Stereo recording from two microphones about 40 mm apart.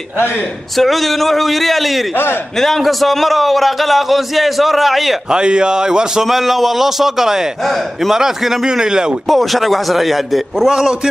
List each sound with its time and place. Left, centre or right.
0.7 s a man's voice: centre
5.3 s a man's voice: right
6.2 s a man's voice: centre
9.3 s a man's voice: centre
10.7 s a man's voice: centre